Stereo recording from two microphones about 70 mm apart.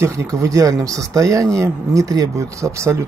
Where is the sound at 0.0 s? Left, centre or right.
Right.